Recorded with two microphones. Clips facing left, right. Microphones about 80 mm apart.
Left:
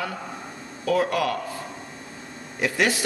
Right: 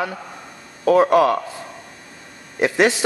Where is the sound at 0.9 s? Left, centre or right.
Right.